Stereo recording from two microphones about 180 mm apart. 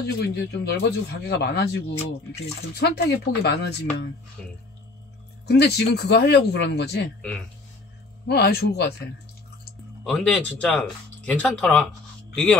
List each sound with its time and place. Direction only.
0.0 s speech: 65° left (ahead or behind)
4.4 s speech: 5° left (ahead or behind)
5.5 s speech: 65° left (ahead or behind)
7.2 s speech: 5° left (ahead or behind)
8.3 s speech: 60° left (ahead or behind)
10.0 s speech: 5° left (ahead or behind)